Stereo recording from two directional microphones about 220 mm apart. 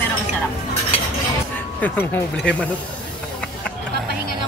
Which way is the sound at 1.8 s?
10° left (ahead or behind).